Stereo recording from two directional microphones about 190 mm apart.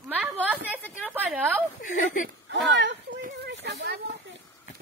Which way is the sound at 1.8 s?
45° left (ahead or behind).